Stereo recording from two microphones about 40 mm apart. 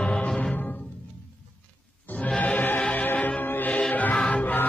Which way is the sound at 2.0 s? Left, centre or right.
Left.